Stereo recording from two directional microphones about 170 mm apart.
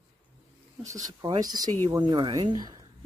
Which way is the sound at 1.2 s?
25° right (ahead or behind).